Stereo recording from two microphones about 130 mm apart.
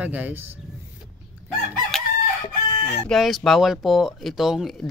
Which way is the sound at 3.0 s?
Centre (ahead or behind).